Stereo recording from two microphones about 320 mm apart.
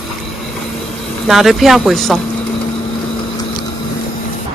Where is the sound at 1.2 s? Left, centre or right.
Centre.